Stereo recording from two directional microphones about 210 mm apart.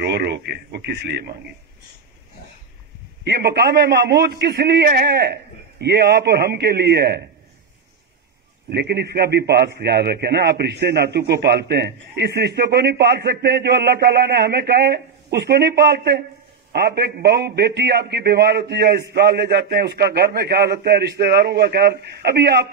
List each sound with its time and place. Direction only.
0.0 s a man's voice: 50° right (ahead or behind)
3.3 s a man's voice: 50° right (ahead or behind)
8.6 s a man's voice: 50° right (ahead or behind)